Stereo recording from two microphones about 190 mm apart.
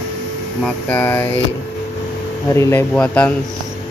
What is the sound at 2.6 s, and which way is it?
Speech, 15° left (ahead or behind).